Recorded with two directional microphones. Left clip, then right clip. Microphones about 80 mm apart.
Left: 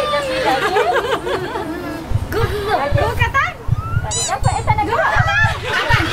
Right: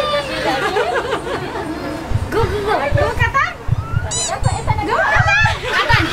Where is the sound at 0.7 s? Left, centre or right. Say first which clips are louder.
Left 2 dB; left.